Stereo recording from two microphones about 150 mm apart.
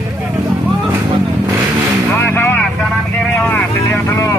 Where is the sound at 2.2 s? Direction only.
15° left (ahead or behind).